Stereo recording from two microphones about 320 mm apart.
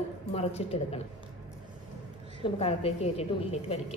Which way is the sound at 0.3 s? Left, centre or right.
Centre.